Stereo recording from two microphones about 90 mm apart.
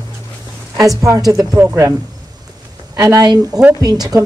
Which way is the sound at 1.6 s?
30° right (ahead or behind).